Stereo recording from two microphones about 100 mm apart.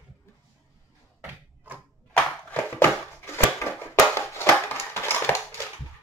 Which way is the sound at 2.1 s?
20° left (ahead or behind).